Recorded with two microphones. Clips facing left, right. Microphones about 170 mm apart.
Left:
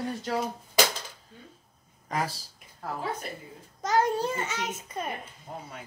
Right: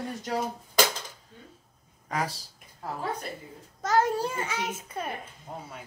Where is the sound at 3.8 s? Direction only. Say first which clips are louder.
Even; 5° right (ahead or behind).